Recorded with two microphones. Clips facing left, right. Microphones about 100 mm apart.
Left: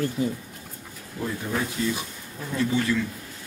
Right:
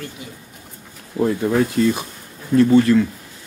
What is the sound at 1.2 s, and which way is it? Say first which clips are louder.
Speech: right 11 dB; 55° right (ahead or behind).